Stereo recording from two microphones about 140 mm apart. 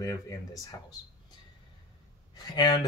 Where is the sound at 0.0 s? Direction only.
25° left (ahead or behind).